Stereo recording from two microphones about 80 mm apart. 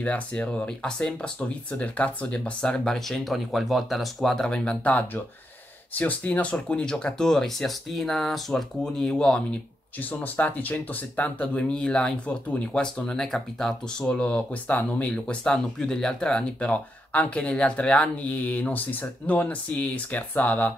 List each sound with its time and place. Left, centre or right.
0.0 s speech: centre